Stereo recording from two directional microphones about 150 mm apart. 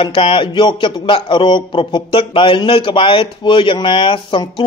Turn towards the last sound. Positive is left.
turn(degrees=35)  # may be behind; listen again after turning